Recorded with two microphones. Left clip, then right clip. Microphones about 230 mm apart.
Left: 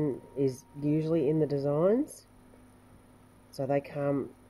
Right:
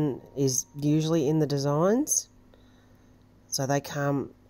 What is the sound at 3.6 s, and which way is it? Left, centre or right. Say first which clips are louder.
Speech: right 1 dB; right.